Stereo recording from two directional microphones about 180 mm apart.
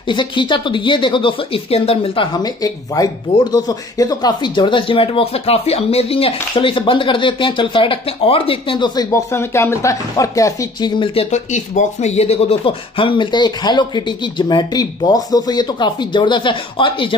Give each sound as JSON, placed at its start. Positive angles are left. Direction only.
{"t": 0.1, "sound": "speech", "side_deg": 25}
{"t": 11.2, "sound": "speech", "side_deg": 40}